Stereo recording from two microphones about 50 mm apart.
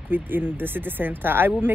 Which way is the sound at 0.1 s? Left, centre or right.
Right.